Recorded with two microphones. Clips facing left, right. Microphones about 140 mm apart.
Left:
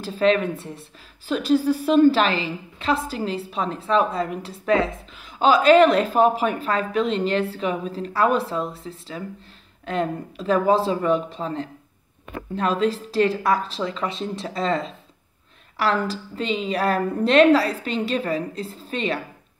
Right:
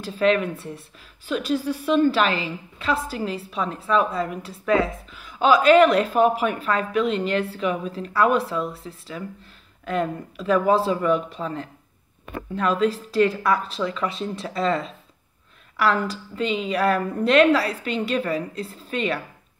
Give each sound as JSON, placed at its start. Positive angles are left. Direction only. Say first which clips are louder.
{"t": 0.0, "sound": "a woman's voice", "louder": "left 1 dB", "side_deg": 30}